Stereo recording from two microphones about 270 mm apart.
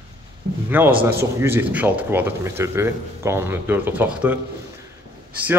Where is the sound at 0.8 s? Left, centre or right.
Centre.